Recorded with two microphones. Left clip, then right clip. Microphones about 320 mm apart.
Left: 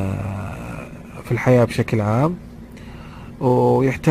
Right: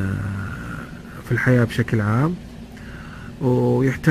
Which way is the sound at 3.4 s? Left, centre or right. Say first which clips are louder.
Left 4 dB; centre.